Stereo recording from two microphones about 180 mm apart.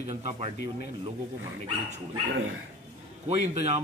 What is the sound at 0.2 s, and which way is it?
Speech, 35° right (ahead or behind).